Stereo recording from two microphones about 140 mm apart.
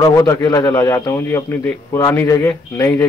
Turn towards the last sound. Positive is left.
turn(degrees=20)  # may be behind; listen again after turning